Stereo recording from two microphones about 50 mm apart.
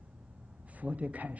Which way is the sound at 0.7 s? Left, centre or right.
Right.